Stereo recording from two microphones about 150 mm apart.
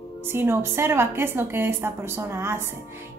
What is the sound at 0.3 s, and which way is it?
A woman's voice, 15° right (ahead or behind).